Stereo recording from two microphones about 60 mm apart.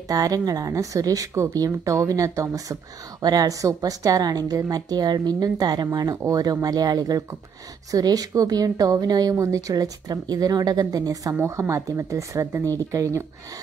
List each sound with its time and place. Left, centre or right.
0.1 s a woman's voice: right
1.5 s speech: right
2.0 s speech: right
11.4 s speech: right
12.6 s speech: right